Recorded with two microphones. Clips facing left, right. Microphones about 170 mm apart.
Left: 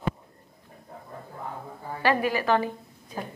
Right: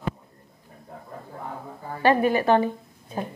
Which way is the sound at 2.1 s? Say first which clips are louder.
Right 4 dB; 30° right (ahead or behind).